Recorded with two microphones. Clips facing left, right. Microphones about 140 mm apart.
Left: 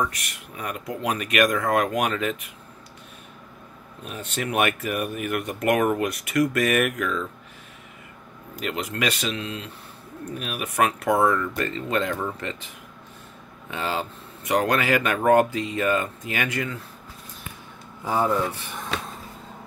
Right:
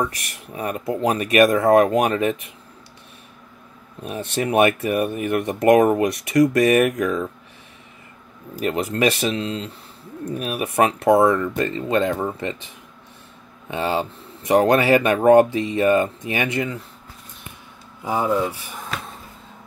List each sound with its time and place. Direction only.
0.6 s speech: 30° right (ahead or behind)
4.1 s speech: 25° right (ahead or behind)
8.6 s speech: 35° right (ahead or behind)
13.7 s speech: 25° right (ahead or behind)
18.0 s speech: 15° right (ahead or behind)